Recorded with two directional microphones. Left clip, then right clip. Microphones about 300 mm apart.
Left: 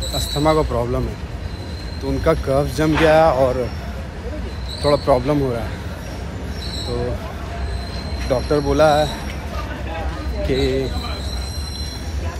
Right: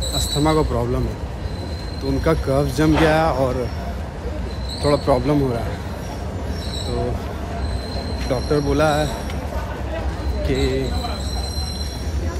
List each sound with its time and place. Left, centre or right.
0.4 s speech: centre
2.2 s speech: centre
4.8 s speech: centre
8.3 s speech: centre
10.5 s speech: centre